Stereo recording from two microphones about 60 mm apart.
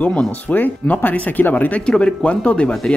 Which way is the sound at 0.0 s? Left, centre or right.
Left.